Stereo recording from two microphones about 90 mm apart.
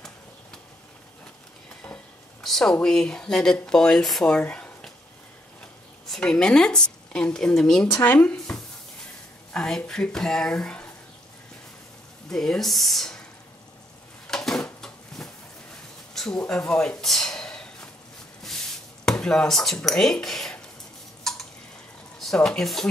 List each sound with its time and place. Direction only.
2.4 s speech: 5° left (ahead or behind)
7.9 s speech: 20° left (ahead or behind)
12.3 s speech: 5° left (ahead or behind)
14.2 s a sound: 5° left (ahead or behind)
16.3 s speech: 10° left (ahead or behind)
17.0 s a sound: 5° left (ahead or behind)
19.2 s speech: 5° left (ahead or behind)
22.2 s speech: 5° left (ahead or behind)